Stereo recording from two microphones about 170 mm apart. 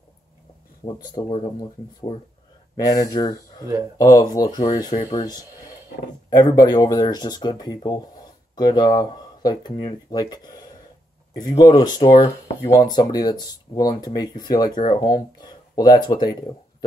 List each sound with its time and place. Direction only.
0.8 s speech: 25° left (ahead or behind)
2.8 s speech: 20° left (ahead or behind)
6.3 s speech: 20° left (ahead or behind)